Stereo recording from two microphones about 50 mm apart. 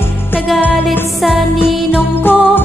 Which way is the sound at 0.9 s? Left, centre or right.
Centre.